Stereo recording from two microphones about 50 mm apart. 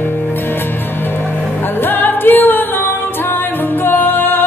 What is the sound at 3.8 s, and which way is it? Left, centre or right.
Music, left.